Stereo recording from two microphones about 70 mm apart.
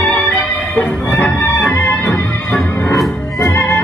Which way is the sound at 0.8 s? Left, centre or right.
Left.